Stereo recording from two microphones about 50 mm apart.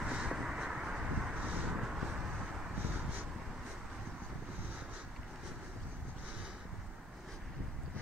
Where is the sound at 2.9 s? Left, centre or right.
Right.